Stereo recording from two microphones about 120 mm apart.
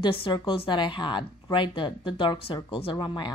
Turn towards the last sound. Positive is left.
turn(degrees=40)  # may be behind; listen again after turning